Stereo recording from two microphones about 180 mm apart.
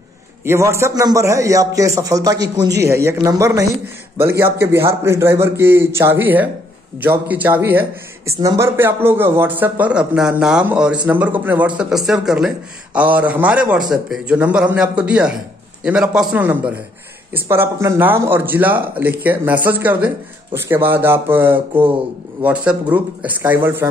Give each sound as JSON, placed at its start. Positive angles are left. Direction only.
{"t": 0.5, "sound": "a man's voice", "side_deg": -15}